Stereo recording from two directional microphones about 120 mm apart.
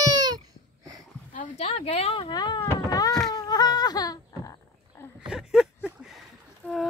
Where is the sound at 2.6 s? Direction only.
30° left (ahead or behind).